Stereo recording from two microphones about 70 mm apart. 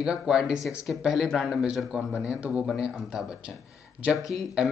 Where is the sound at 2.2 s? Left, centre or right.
Centre.